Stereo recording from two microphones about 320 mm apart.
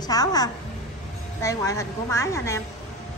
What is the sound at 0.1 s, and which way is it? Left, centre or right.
Speech, centre.